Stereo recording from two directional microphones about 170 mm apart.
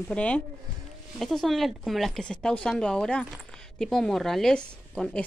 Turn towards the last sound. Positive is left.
turn(degrees=5)  # may be behind; listen again after turning